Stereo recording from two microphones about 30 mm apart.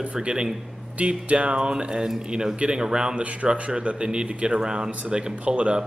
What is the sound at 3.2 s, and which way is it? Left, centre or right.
Speech, right.